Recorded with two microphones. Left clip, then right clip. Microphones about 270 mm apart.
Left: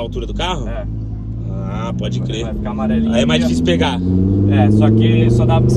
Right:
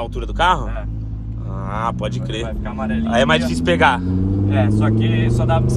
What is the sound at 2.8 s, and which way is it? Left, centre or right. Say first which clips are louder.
Speech: even; centre.